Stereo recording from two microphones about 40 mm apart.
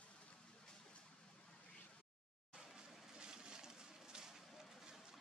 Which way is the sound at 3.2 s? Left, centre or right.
Centre.